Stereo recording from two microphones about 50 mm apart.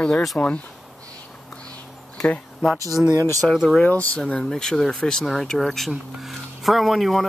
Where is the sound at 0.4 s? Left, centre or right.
Left.